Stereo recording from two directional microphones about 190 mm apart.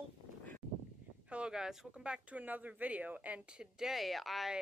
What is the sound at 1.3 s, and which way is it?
Speech, 5° right (ahead or behind).